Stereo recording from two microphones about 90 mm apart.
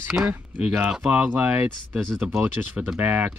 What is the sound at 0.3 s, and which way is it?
Speech, 15° right (ahead or behind).